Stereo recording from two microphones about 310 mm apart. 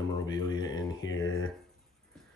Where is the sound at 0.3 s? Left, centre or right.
Centre.